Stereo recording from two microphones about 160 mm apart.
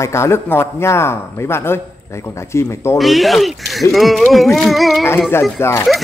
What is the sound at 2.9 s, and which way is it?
Speech, centre (ahead or behind).